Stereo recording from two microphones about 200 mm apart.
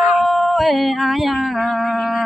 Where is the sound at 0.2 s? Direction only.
Centre (ahead or behind).